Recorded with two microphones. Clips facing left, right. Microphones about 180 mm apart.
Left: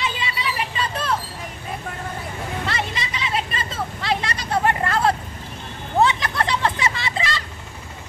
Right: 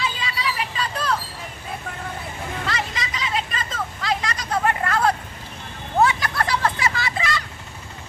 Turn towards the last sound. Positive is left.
turn(degrees=25)  # may be behind; listen again after turning